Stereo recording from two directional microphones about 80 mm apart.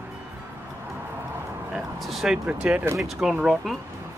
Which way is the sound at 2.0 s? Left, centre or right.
Centre.